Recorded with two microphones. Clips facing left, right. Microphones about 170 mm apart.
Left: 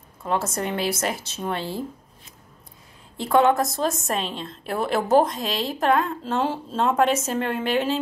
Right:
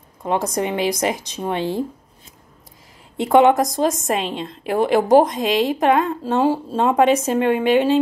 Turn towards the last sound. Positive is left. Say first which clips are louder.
# right 8 dB
turn(degrees=-15)  # may be behind; listen again after turning